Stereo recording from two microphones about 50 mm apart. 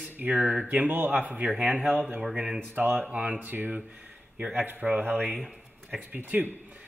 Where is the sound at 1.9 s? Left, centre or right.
Right.